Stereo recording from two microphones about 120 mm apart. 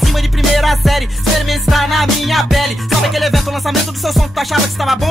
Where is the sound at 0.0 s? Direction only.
Centre (ahead or behind).